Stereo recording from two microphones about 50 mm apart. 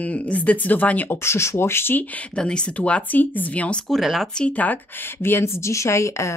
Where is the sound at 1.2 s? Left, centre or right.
Left.